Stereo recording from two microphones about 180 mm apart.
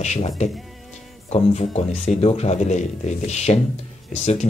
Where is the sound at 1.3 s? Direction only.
35° left (ahead or behind).